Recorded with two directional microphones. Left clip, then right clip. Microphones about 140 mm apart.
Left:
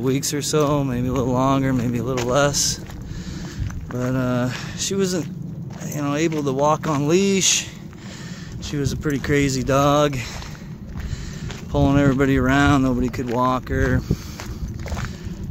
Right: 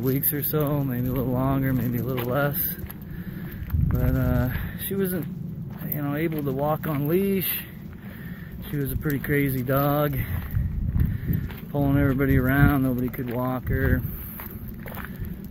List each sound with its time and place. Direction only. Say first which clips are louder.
0.0 s speech: left 5 dB; 20° left (ahead or behind)
0.7 s speech: left 6 dB; 30° left (ahead or behind)
4.1 s speech: left 6 dB; 25° left (ahead or behind)
8.7 s speech: left 5 dB; 25° left (ahead or behind)
11.7 s speech: left 6 dB; 35° left (ahead or behind)